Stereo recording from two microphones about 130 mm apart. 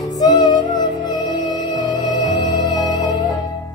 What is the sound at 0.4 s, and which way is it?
Music, 35° left (ahead or behind).